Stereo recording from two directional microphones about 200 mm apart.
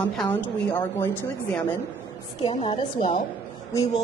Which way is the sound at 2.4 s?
25° left (ahead or behind).